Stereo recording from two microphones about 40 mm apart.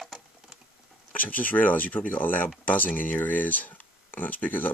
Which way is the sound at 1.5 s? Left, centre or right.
Left.